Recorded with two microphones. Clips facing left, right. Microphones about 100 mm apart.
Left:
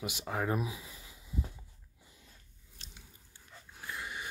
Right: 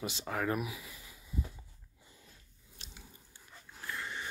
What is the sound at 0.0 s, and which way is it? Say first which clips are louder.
Speech: even; 15° left (ahead or behind).